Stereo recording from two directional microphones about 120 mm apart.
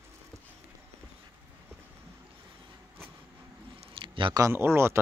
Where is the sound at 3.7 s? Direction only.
50° right (ahead or behind).